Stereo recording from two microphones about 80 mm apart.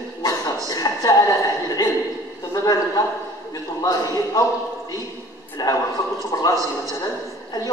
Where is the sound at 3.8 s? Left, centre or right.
Left.